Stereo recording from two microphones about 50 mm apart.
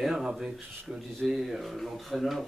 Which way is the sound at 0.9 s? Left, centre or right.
Centre.